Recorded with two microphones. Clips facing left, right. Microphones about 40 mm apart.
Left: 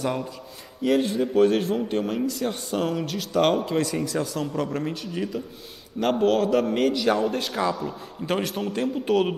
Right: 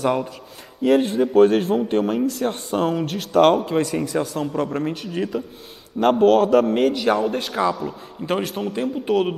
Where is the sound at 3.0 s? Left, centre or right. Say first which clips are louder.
Right 6 dB; right.